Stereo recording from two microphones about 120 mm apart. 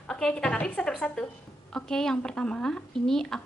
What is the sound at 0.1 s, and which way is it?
A woman's voice, 5° left (ahead or behind).